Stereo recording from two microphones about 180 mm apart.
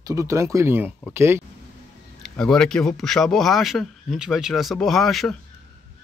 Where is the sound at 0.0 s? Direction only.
15° right (ahead or behind).